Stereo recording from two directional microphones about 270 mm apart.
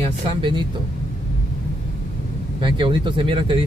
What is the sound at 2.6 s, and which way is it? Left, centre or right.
Speech, centre.